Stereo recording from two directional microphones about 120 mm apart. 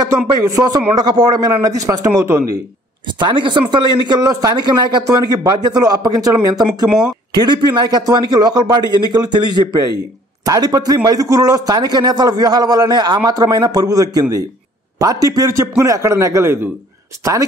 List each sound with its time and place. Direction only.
0.3 s a man's voice: 30° right (ahead or behind)
3.1 s a man's voice: 40° right (ahead or behind)
6.9 s speech: 5° right (ahead or behind)
7.3 s a man's voice: 35° right (ahead or behind)